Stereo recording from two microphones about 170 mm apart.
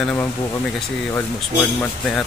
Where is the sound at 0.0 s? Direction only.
10° left (ahead or behind).